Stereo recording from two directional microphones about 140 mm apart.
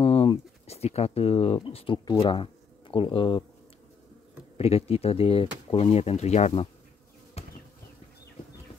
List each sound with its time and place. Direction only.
0.0 s speech: 45° left (ahead or behind)
4.6 s speech: 45° left (ahead or behind)
7.4 s bee: 50° left (ahead or behind)